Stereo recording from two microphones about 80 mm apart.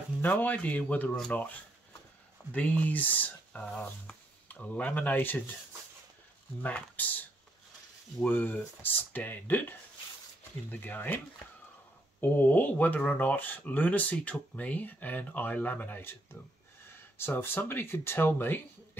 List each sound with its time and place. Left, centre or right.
0.2 s speech: left
2.5 s speech: centre
6.6 s speech: left
8.3 s speech: left
12.2 s speech: left